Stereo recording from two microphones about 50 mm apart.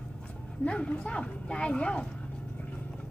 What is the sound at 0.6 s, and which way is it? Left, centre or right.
A woman's voice, left.